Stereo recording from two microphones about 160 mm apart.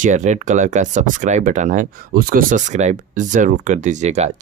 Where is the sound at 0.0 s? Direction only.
50° right (ahead or behind).